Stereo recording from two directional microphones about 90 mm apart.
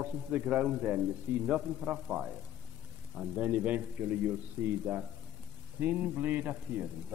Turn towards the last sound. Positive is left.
turn(degrees=-15)  # may be behind; listen again after turning